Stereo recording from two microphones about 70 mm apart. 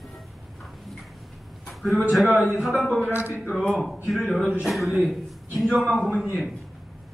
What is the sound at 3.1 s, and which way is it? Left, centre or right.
Speech, left.